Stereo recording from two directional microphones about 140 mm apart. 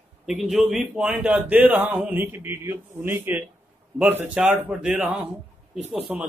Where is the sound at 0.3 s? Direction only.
Centre (ahead or behind).